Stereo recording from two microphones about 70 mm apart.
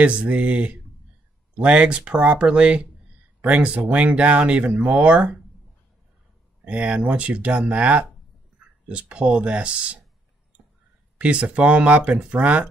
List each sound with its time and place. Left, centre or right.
0.0 s speech: centre
6.6 s speech: centre
11.1 s speech: centre